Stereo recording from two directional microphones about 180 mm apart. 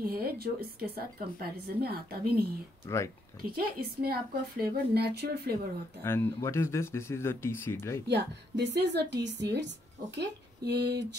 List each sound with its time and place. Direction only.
0.0 s a woman's voice: 55° right (ahead or behind)
3.4 s a woman's voice: 55° right (ahead or behind)
6.0 s speech: 15° left (ahead or behind)
8.1 s a woman's voice: 70° right (ahead or behind)